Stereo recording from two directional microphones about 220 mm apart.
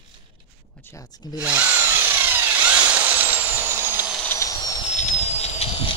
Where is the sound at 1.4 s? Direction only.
5° right (ahead or behind).